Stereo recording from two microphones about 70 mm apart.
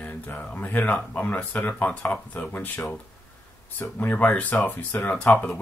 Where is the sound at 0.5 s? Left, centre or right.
Left.